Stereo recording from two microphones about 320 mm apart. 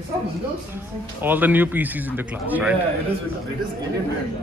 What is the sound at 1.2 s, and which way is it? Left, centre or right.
Music, centre.